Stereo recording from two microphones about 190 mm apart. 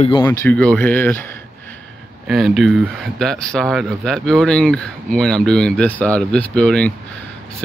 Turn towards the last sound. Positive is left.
turn(degrees=5)  # may be behind; listen again after turning